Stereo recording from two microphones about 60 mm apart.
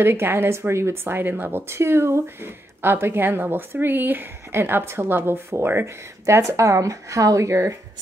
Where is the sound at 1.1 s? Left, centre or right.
Right.